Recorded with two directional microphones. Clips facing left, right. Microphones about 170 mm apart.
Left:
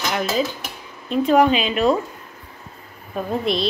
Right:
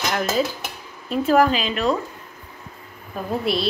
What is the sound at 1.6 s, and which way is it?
Speech, 10° left (ahead or behind).